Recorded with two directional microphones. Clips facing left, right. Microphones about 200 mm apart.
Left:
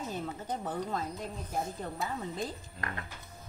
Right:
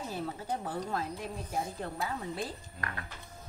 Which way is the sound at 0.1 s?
10° right (ahead or behind).